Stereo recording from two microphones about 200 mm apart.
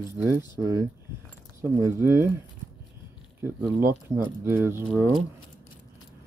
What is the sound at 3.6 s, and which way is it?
Speech, 15° right (ahead or behind).